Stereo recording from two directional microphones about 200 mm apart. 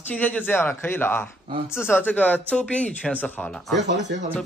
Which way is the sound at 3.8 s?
60° right (ahead or behind).